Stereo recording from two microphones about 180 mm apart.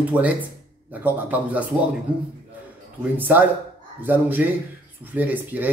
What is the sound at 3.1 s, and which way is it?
Speech, 10° right (ahead or behind).